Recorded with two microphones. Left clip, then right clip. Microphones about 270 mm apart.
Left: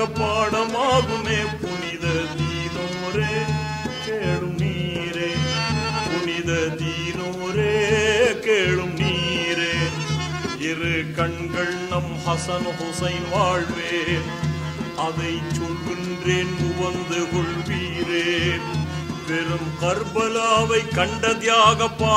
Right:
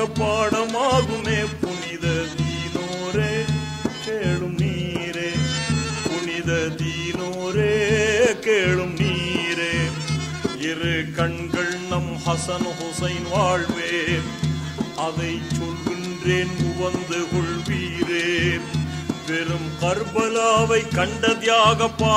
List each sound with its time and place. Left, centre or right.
0.0 s music: centre
5.4 s music: right
7.5 s music: centre
10.8 s mantra: centre
13.0 s music: centre
16.3 s music: centre